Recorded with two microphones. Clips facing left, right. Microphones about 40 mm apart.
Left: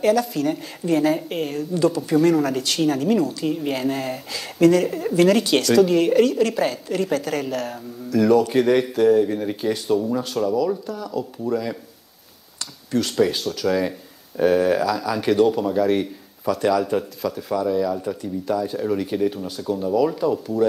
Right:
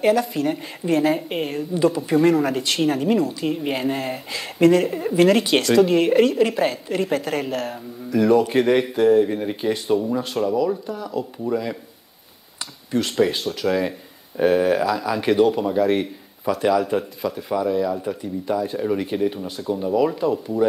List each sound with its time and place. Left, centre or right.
0.0 s a woman's voice: centre